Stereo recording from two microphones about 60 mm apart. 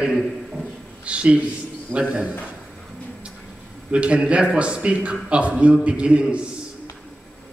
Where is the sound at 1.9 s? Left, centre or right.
Centre.